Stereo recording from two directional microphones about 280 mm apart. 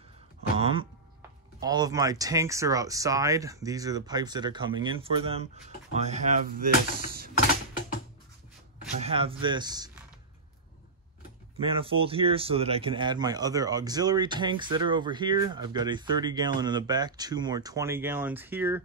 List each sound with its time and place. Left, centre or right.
0.6 s a sound: centre
1.6 s speech: centre; by 7.2 s right
9.0 s speech: centre
11.6 s speech: centre